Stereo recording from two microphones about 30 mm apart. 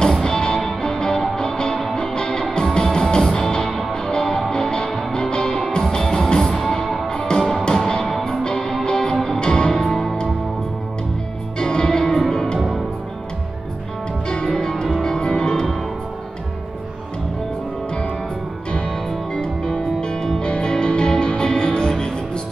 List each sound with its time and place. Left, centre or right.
0.2 s music: left
6.5 s music: centre
7.6 s music: left
8.0 s music: centre
8.5 s music: left
9.8 s music: centre
11.6 s music: left
12.5 s music: centre
14.3 s music: left
19.3 s music: left